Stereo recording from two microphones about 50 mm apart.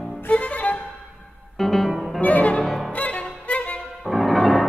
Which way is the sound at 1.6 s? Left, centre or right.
Centre.